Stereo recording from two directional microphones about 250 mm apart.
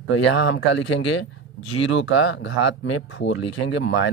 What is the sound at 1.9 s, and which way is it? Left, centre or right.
Speech, left.